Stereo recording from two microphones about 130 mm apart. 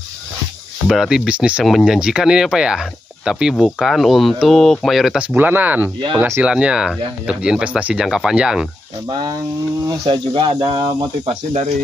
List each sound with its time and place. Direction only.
0.8 s speech: 5° right (ahead or behind)
5.2 s speech: 15° right (ahead or behind)
9.1 s speech: 30° right (ahead or behind)